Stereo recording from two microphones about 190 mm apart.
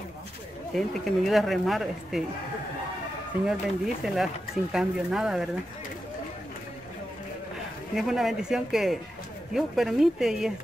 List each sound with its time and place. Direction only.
0.7 s speech: centre (ahead or behind)
3.4 s speech: centre (ahead or behind)
7.9 s speech: centre (ahead or behind)